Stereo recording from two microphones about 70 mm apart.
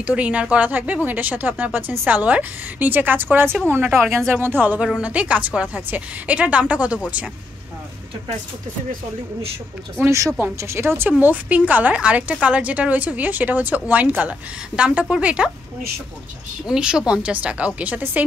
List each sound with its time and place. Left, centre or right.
0.0 s a woman's voice: centre
4.7 s a woman's voice: centre
10.6 s a woman's voice: right; by 15.5 s centre
16.6 s a woman's voice: centre